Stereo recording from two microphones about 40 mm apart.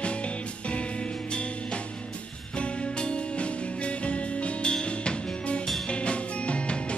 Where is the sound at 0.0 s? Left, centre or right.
Left.